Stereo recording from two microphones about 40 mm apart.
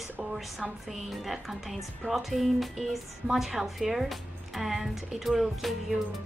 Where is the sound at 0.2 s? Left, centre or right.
Centre.